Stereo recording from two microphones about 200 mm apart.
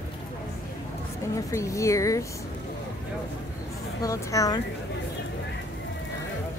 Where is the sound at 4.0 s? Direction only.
15° left (ahead or behind).